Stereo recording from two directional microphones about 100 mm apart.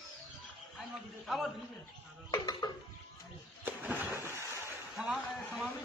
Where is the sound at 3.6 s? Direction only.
20° right (ahead or behind).